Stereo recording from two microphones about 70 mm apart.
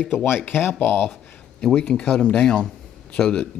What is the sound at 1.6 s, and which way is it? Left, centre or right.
Speech, centre.